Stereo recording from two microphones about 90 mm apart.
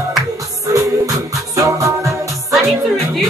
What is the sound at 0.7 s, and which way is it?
Music, 40° right (ahead or behind).